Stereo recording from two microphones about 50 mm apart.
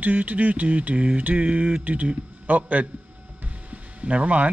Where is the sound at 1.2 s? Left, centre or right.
Right.